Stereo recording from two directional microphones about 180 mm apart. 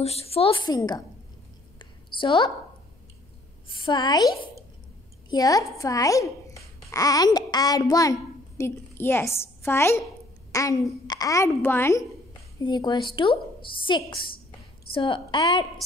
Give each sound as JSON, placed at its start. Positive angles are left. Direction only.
{"t": 0.0, "sound": "a woman's voice", "side_deg": 35}
{"t": 1.8, "sound": "a sound", "side_deg": 30}
{"t": 3.6, "sound": "a woman's voice", "side_deg": 25}
{"t": 5.3, "sound": "a child's voice", "side_deg": 20}
{"t": 12.5, "sound": "a woman's voice", "side_deg": 25}